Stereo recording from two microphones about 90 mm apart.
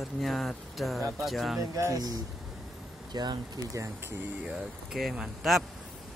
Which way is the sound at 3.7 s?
30° right (ahead or behind).